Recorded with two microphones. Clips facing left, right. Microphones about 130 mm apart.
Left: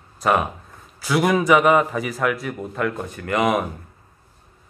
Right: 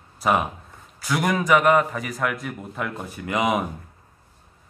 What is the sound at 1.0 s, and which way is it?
Speech, 10° left (ahead or behind).